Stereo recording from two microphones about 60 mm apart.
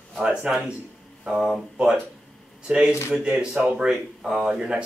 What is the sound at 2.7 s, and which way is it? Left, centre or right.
Speech, centre.